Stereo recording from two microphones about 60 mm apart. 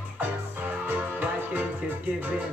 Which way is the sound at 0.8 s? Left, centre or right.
Right.